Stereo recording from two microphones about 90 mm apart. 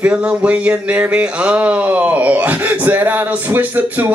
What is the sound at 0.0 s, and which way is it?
Speech, 10° right (ahead or behind).